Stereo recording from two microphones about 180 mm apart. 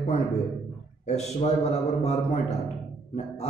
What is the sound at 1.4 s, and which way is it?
A man's voice, 35° left (ahead or behind).